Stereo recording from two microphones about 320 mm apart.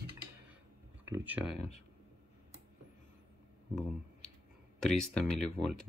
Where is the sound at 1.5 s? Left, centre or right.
Centre.